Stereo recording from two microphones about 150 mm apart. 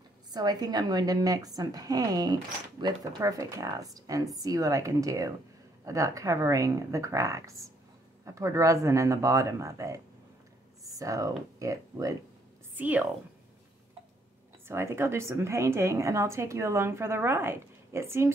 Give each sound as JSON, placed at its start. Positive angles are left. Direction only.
{"t": 0.3, "sound": "a woman's voice", "side_deg": -25}
{"t": 12.7, "sound": "a woman's voice", "side_deg": -10}
{"t": 14.7, "sound": "a woman's voice", "side_deg": -15}